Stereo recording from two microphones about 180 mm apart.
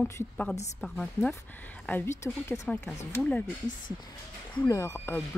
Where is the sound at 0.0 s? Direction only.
10° left (ahead or behind).